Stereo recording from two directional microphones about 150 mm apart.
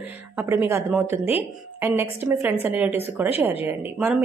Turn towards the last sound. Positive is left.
turn(degrees=-10)  # may be behind; listen again after turning